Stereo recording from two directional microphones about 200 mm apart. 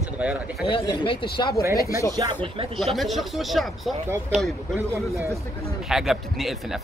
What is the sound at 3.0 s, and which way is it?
Speech, centre (ahead or behind).